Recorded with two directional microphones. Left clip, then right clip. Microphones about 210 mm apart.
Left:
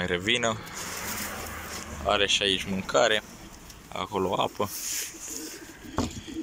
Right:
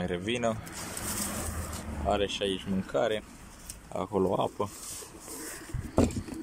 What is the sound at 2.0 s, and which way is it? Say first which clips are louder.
Speech: left 5 dB; 10° right (ahead or behind).